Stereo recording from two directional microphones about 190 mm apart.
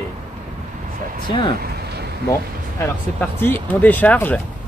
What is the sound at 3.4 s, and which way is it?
Speech, 10° left (ahead or behind).